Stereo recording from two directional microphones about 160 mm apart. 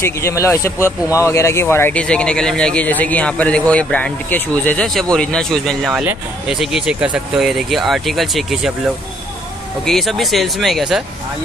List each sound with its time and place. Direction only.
0.0 s a man's voice: 15° left (ahead or behind); by 8.7 s centre (ahead or behind)
9.8 s a man's voice: centre (ahead or behind)